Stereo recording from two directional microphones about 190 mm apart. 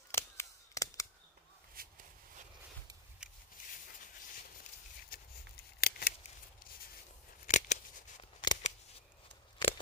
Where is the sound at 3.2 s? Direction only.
5° right (ahead or behind).